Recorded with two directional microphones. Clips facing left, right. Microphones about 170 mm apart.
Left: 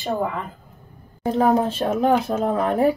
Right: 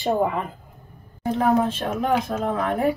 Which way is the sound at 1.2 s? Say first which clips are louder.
Left 2 dB; 35° left (ahead or behind).